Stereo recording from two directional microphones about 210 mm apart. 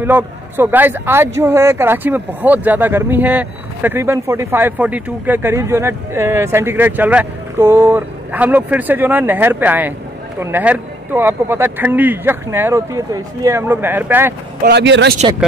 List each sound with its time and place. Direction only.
0.0 s speech: 10° right (ahead or behind)
14.6 s speech: 50° right (ahead or behind)